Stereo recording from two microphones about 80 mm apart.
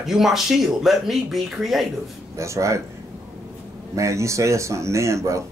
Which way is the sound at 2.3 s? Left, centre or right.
Right.